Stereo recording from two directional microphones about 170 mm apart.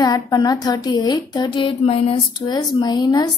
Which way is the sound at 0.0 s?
20° left (ahead or behind).